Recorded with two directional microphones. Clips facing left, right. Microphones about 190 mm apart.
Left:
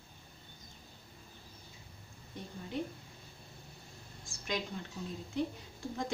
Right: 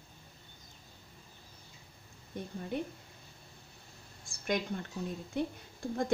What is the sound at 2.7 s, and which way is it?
Speech, 55° right (ahead or behind).